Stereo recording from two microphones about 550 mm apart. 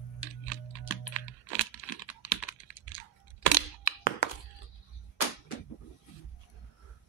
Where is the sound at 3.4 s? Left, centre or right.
Left.